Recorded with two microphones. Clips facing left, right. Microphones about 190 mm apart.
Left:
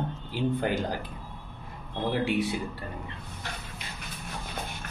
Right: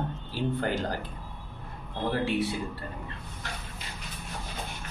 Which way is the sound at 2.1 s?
15° left (ahead or behind).